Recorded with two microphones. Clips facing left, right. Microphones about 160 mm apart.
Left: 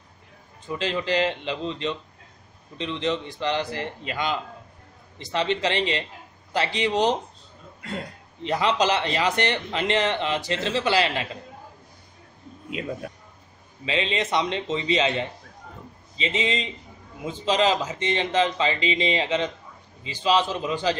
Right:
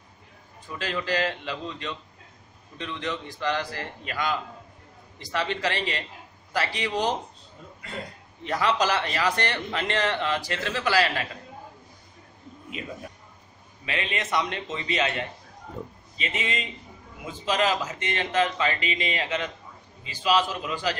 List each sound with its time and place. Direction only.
0.7 s a man's voice: 20° left (ahead or behind)
8.4 s a man's voice: 20° left (ahead or behind)
13.8 s a man's voice: 25° left (ahead or behind)